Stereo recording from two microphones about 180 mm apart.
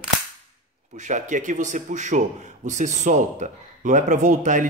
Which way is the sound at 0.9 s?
45° right (ahead or behind).